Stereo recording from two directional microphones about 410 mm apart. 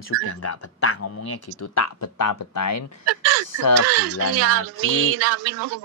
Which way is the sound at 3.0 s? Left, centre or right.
Right.